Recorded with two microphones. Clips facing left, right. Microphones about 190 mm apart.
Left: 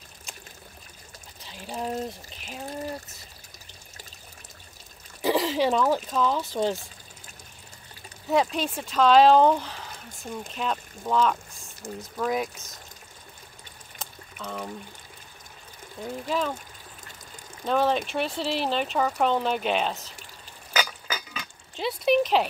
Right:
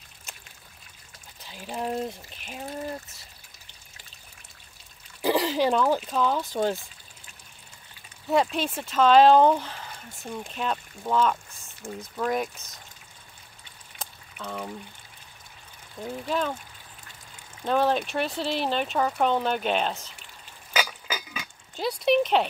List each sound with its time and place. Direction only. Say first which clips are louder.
1.5 s speech: right 1 dB; centre (ahead or behind)
5.2 s speech: even; centre (ahead or behind)
8.3 s speech: even; centre (ahead or behind)
11.8 s speech: even; 20° left (ahead or behind)
12.2 s speech: even; centre (ahead or behind)
13.9 s a sound: even; centre (ahead or behind)
16.3 s speech: even; centre (ahead or behind)
17.6 s speech: even; centre (ahead or behind)
20.7 s a sound: even; 10° right (ahead or behind)